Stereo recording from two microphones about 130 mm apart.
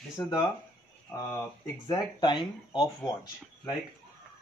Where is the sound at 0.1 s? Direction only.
35° left (ahead or behind).